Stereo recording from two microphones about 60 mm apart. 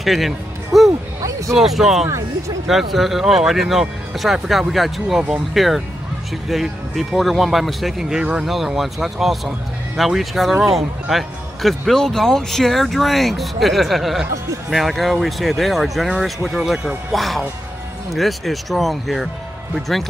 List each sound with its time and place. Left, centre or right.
0.0 s speech: centre
2.0 s speech: right
2.7 s speech: centre